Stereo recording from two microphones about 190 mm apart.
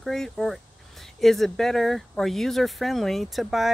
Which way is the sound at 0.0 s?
Centre (ahead or behind).